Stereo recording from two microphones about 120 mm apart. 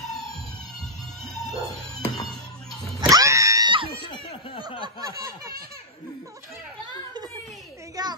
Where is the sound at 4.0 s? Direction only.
50° left (ahead or behind).